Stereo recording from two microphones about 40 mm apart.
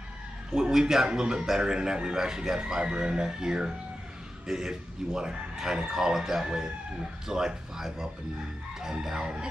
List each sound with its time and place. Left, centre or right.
0.5 s speech: centre